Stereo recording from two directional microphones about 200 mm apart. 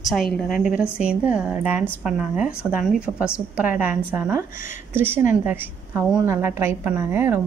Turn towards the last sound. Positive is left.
turn(degrees=-10)  # may be behind; listen again after turning